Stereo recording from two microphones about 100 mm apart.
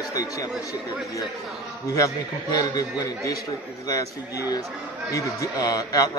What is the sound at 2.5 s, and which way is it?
Speech, 35° left (ahead or behind).